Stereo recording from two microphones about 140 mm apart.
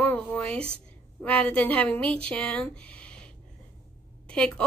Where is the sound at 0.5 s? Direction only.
45° right (ahead or behind).